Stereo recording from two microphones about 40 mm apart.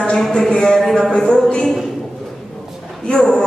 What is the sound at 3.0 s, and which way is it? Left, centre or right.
Speech, centre.